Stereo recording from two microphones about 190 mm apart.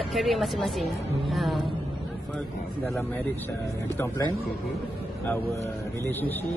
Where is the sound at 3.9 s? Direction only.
20° left (ahead or behind).